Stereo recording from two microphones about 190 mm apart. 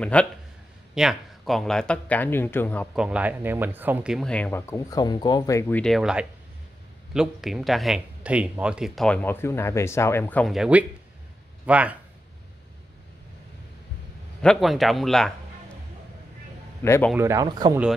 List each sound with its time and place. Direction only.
0.0 s a man's voice: 5° left (ahead or behind)
3.0 s speech: 5° right (ahead or behind); by 10.5 s 10° left (ahead or behind)
10.5 s speech: 5° right (ahead or behind)
14.4 s speech: centre (ahead or behind)
16.8 s a man's voice: 15° left (ahead or behind)
17.1 s speech: 15° right (ahead or behind)